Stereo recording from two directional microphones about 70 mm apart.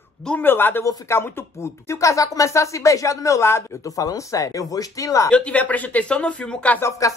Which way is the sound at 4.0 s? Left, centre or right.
Left.